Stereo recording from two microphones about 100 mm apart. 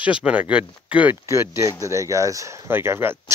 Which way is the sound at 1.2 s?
30° right (ahead or behind).